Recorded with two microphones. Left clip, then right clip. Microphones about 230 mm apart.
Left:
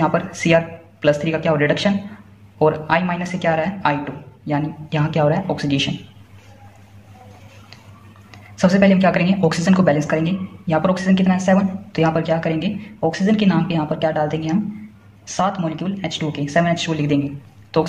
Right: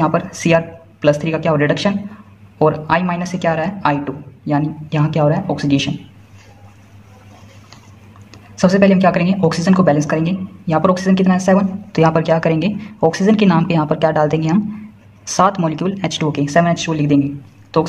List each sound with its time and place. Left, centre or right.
0.0 s speech: right
8.3 s speech: right